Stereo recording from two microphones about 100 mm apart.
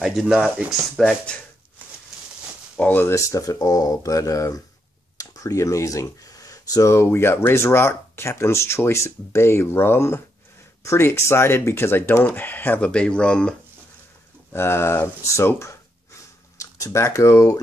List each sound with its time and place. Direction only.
0.0 s speech: 5° right (ahead or behind)
2.8 s speech: 20° left (ahead or behind)
3.2 s speech: 30° left (ahead or behind); by 13.6 s 10° left (ahead or behind)
14.5 s speech: 25° left (ahead or behind)